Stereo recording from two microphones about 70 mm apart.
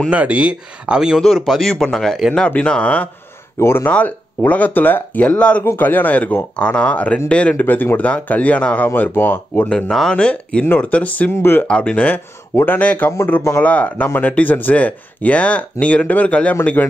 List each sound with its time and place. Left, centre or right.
0.1 s a man's voice: centre
2.3 s speech: centre
3.5 s speech: left
3.9 s speech: left
5.6 s speech: left
8.8 s speech: left
9.7 s speech: centre
11.3 s speech: left
11.6 s speech: centre